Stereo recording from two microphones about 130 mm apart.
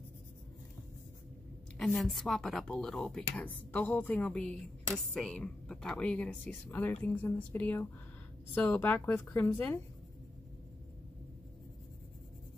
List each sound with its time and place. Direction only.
2.0 s a woman's voice: centre (ahead or behind)